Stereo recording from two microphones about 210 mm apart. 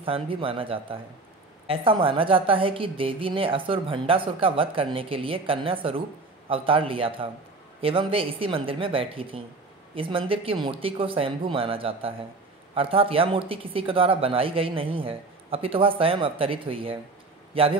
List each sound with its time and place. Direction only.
0.0 s a woman's voice: 25° right (ahead or behind)